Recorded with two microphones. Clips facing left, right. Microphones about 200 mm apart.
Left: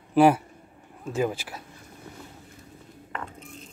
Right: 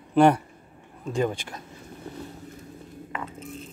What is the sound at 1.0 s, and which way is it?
Speech, 5° left (ahead or behind).